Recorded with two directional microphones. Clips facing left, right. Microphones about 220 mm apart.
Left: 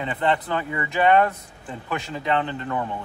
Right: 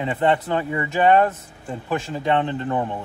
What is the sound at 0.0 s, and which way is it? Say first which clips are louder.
Speech: right 3 dB; 30° right (ahead or behind).